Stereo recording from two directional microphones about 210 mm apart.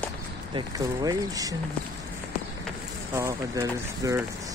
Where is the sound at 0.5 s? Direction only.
15° right (ahead or behind).